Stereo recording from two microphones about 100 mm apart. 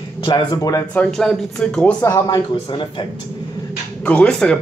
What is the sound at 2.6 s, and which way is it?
Speech, 55° left (ahead or behind).